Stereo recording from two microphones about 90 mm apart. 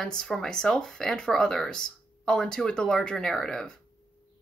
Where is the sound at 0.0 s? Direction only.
5° left (ahead or behind).